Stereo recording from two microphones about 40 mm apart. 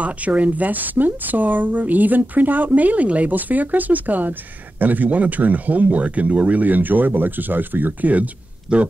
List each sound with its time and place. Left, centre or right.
0.0 s a woman's voice: right
8.7 s speech: right